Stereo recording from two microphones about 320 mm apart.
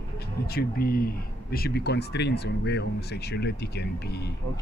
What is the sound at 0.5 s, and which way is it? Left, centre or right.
Speech, left.